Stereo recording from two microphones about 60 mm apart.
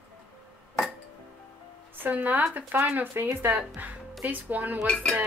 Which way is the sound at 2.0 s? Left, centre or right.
Right.